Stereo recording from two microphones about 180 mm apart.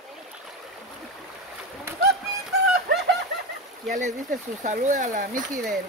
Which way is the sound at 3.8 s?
40° right (ahead or behind).